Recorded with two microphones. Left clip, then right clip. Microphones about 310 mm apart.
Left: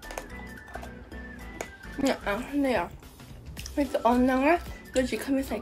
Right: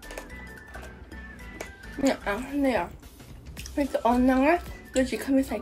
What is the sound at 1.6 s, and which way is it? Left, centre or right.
Speech, centre.